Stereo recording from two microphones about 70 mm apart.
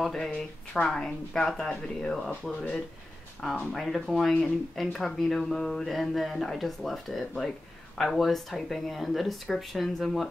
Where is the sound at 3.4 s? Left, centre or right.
Centre.